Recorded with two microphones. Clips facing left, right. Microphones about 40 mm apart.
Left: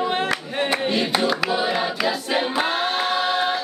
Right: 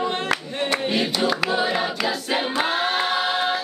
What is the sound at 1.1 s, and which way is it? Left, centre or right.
Choir, centre.